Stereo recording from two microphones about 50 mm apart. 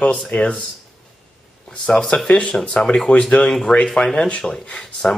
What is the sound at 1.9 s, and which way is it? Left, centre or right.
Speech, left.